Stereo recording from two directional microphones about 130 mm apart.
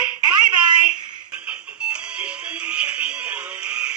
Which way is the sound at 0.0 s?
10° right (ahead or behind).